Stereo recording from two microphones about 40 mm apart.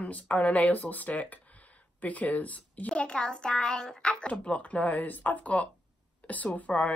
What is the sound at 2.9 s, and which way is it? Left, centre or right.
A child's voice, left.